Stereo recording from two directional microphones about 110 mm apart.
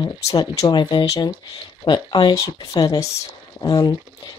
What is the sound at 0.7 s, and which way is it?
Speech, 45° left (ahead or behind).